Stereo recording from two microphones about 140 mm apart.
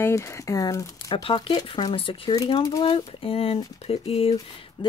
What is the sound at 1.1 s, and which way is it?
Speech, 40° left (ahead or behind).